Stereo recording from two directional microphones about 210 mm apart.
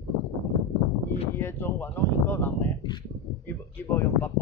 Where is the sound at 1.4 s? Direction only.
10° left (ahead or behind).